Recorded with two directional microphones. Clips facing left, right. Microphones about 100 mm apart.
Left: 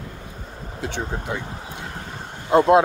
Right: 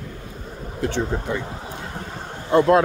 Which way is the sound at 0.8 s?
15° left (ahead or behind).